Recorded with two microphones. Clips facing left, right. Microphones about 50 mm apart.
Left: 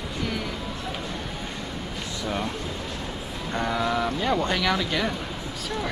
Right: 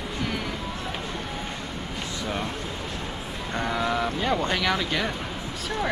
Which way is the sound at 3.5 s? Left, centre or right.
Centre.